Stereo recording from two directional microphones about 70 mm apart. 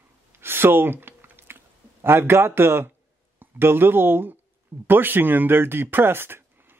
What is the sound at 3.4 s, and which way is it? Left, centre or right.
Speech, right.